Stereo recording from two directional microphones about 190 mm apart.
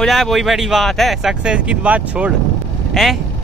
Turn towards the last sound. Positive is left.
turn(degrees=0)  # may be behind; listen again after turning